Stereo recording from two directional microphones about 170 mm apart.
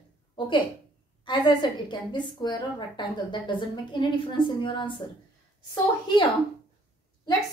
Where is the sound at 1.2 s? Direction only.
25° left (ahead or behind).